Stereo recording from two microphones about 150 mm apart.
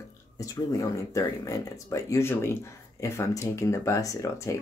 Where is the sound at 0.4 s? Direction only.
25° left (ahead or behind).